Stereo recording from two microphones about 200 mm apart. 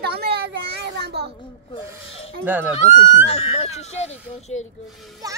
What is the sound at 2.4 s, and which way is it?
Speech, 10° right (ahead or behind).